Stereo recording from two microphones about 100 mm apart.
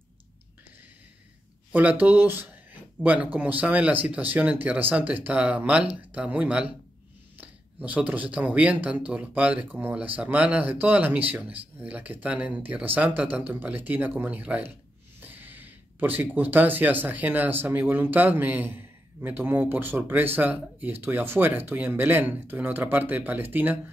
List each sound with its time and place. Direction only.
1.7 s speech: 15° right (ahead or behind)